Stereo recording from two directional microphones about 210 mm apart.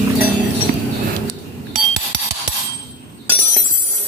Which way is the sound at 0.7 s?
35° right (ahead or behind).